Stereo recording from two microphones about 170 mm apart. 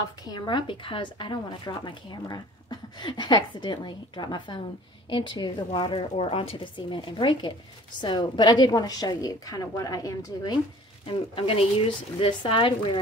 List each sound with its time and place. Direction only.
0.2 s speech: 25° left (ahead or behind)
11.1 s speech: 35° left (ahead or behind)